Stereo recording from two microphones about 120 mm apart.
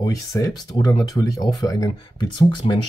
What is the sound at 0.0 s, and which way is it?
Speech, 30° left (ahead or behind).